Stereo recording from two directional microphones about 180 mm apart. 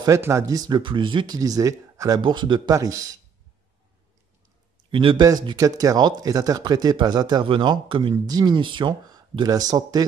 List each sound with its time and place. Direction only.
0.0 s speech: 15° right (ahead or behind)
4.9 s speech: 25° right (ahead or behind)